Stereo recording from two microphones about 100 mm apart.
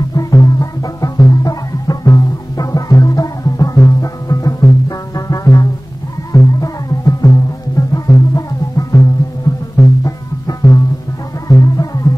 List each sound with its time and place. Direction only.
0.1 s music: 35° left (ahead or behind)